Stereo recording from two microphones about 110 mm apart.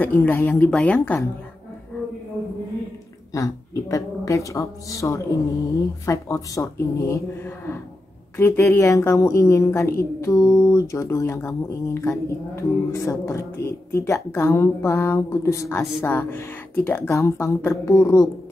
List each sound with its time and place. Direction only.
0.0 s speech: 15° left (ahead or behind)
3.3 s a woman's voice: 30° left (ahead or behind)